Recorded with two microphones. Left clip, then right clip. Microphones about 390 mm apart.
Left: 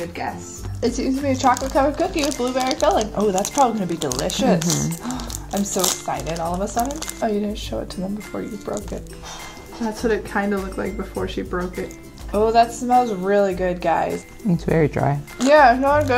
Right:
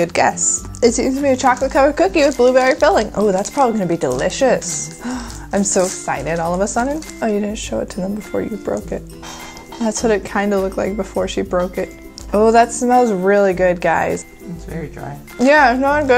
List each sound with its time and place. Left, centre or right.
0.7 s speech: right
9.8 s speech: right
12.3 s speech: right
14.7 s speech: left
15.4 s speech: right